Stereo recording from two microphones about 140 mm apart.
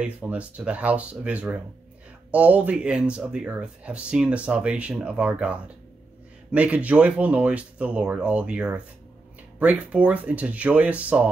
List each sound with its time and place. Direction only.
0.0 s speech: 10° right (ahead or behind)